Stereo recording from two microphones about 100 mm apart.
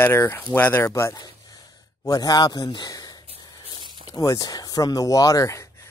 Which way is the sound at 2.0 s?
40° left (ahead or behind).